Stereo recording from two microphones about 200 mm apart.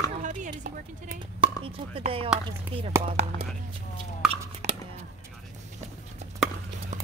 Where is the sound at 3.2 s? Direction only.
35° right (ahead or behind).